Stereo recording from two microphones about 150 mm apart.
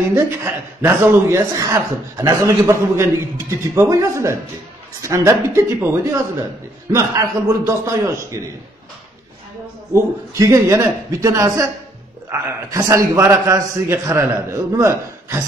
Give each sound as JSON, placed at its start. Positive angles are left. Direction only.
{"t": 0.1, "sound": "speech", "side_deg": -15}
{"t": 9.9, "sound": "speech", "side_deg": -20}